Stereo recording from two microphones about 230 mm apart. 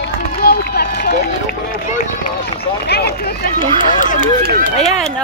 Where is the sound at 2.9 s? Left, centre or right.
Left.